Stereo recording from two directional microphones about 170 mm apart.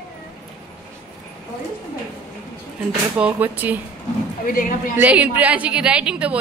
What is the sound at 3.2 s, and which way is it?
Speech, 10° right (ahead or behind).